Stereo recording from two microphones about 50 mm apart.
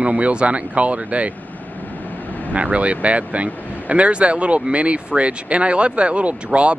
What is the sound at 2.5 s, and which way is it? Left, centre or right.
Speech, right.